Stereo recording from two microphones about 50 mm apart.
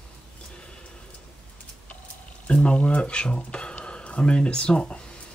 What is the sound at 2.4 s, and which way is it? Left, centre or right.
Speech, left.